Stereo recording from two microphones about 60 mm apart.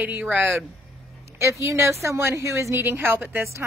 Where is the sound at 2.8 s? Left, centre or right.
Right.